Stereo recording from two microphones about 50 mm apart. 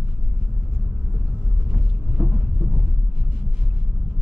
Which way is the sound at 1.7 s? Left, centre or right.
Right.